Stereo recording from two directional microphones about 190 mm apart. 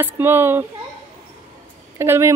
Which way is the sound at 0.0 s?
10° right (ahead or behind).